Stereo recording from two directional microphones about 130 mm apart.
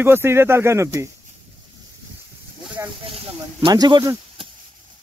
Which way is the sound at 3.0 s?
50° right (ahead or behind).